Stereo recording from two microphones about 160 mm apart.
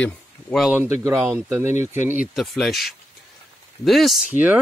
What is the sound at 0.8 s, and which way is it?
Speech, 15° right (ahead or behind).